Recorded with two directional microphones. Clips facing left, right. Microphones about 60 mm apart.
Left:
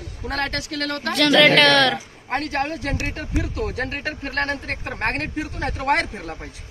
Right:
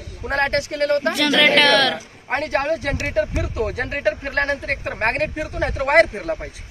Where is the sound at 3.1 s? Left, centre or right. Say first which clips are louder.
Right 5 dB; right.